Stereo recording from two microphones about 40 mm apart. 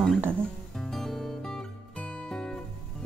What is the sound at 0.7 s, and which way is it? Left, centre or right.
Music, centre.